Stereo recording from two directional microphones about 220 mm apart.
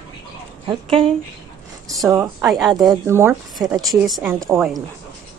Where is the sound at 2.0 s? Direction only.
15° right (ahead or behind).